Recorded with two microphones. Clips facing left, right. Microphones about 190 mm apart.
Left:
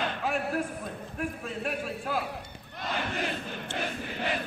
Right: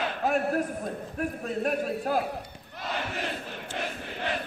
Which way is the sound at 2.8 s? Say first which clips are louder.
Even; 5° right (ahead or behind).